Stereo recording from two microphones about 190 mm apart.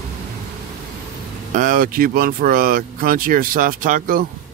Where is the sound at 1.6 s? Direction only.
50° right (ahead or behind).